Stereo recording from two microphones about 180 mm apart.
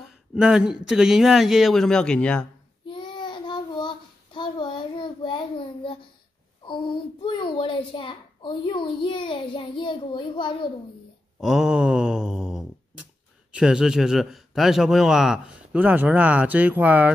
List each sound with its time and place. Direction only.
0.0 s speech: 5° right (ahead or behind)
2.9 s child singing: 25° left (ahead or behind)
6.6 s a child's voice: 25° left (ahead or behind)
11.3 s a sound: centre (ahead or behind)
13.5 s speech: 5° right (ahead or behind)